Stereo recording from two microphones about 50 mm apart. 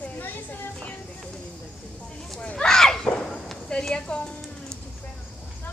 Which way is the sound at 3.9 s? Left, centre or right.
Left.